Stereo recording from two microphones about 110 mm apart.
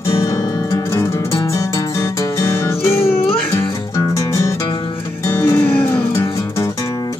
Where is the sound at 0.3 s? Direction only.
30° left (ahead or behind).